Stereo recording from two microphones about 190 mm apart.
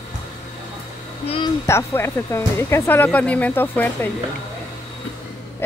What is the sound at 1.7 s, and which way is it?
Speech, 15° left (ahead or behind).